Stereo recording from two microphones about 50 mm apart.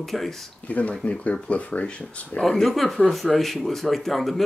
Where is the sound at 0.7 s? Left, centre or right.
Left.